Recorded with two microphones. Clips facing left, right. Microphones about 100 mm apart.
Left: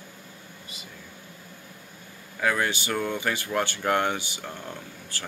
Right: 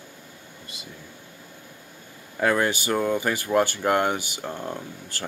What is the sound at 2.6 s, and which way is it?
Speech, 30° right (ahead or behind).